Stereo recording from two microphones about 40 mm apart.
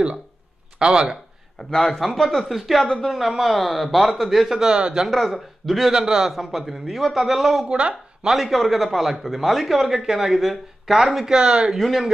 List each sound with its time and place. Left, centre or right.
0.7 s speech: right
1.6 s a man's voice: centre
4.7 s speech: right
5.3 s a man's voice: centre
5.9 s a man's voice: centre
7.6 s speech: right
8.4 s a man's voice: centre
11.2 s speech: centre
11.7 s a man's voice: centre